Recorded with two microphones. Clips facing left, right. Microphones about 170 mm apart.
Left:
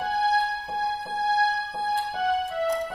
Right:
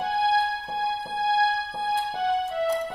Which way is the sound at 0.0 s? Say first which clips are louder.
Right 1 dB; 25° right (ahead or behind).